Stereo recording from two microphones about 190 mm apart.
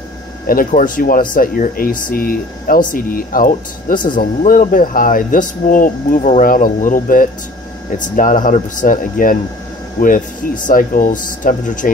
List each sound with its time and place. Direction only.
0.5 s speech: 45° left (ahead or behind)